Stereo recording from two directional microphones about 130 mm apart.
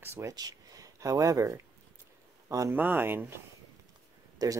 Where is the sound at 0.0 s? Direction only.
20° right (ahead or behind).